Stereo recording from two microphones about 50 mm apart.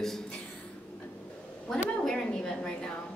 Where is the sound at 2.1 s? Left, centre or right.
Centre.